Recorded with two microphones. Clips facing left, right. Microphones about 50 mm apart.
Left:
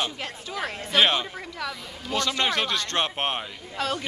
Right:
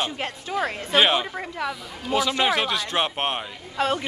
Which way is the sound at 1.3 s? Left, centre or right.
Right.